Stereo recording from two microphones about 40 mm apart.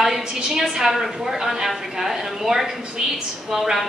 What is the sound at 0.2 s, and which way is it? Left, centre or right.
A woman's voice, centre.